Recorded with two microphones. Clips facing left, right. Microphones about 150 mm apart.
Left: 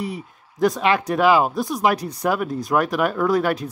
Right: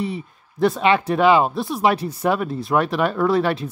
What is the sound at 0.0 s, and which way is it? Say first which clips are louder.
Speech: right 2 dB; centre (ahead or behind).